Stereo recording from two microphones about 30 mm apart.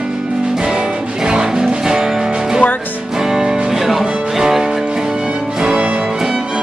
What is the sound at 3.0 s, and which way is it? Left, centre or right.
Music, centre.